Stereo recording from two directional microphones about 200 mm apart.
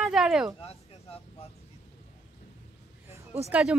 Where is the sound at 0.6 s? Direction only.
30° left (ahead or behind).